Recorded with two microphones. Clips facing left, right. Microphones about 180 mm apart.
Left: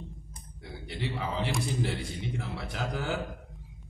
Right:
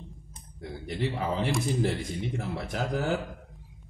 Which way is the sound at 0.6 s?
45° right (ahead or behind).